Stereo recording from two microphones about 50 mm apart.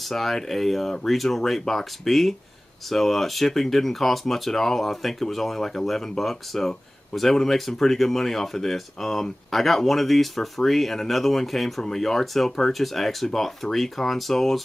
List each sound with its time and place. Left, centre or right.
0.1 s speech: centre